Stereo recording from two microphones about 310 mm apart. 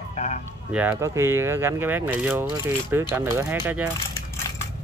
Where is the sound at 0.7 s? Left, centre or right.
Centre.